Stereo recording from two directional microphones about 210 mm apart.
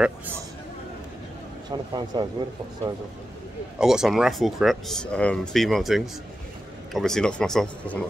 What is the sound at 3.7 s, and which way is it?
Speech, 5° right (ahead or behind).